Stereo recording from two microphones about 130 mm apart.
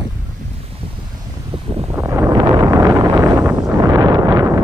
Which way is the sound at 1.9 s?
15° right (ahead or behind).